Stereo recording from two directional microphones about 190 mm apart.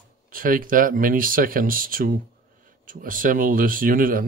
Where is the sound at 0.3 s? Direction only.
45° right (ahead or behind).